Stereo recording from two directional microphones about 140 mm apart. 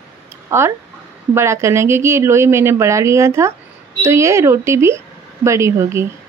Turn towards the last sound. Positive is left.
turn(degrees=-20)  # may be behind; listen again after turning